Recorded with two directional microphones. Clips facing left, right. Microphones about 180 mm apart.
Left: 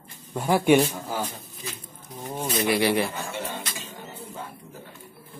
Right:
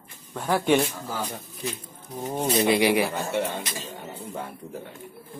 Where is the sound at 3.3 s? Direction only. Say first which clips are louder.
Right 6 dB; 60° right (ahead or behind).